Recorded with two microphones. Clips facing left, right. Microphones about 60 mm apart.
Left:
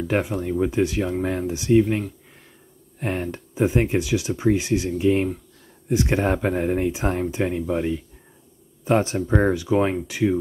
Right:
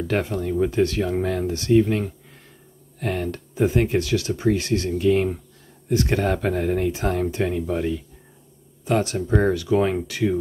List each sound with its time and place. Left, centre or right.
0.1 s speech: centre
8.8 s speech: left